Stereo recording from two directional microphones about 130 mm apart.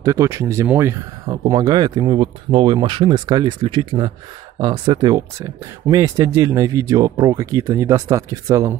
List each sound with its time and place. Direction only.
0.0 s speech: 25° right (ahead or behind)